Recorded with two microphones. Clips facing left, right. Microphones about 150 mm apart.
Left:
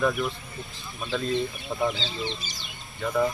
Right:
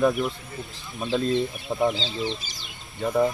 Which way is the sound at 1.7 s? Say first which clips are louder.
Right 4 dB; 20° right (ahead or behind).